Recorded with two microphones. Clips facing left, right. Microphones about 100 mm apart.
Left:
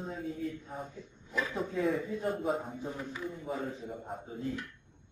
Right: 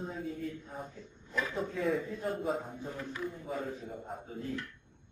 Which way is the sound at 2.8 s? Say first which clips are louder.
Left 2 dB; 20° left (ahead or behind).